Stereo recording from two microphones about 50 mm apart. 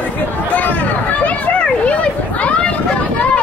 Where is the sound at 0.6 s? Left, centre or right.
Left.